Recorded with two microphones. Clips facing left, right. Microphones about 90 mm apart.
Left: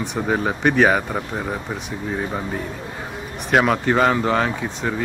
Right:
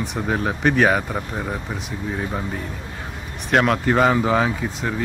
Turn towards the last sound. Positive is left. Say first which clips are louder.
# even
turn(degrees=0)  # may be behind; listen again after turning